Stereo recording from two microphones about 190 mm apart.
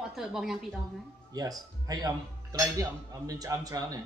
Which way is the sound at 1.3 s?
20° right (ahead or behind).